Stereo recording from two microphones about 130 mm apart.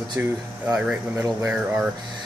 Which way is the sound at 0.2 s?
20° right (ahead or behind).